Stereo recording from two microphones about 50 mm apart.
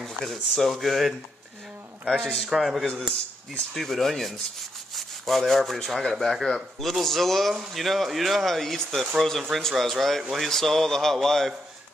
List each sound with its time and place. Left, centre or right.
0.0 s speech: centre
2.0 s a sound: centre
2.5 s speech: centre
2.9 s speech: centre
3.7 s speech: centre
10.5 s a sound: centre